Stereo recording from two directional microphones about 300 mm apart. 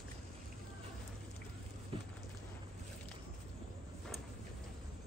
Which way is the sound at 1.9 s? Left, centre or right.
Centre.